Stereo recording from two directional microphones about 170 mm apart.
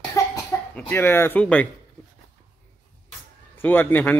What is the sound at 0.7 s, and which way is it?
Speech, 10° left (ahead or behind).